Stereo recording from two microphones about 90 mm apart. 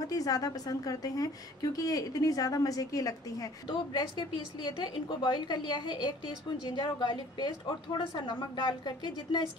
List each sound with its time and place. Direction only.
0.1 s a woman's voice: 40° left (ahead or behind)
3.6 s a woman's voice: 50° left (ahead or behind)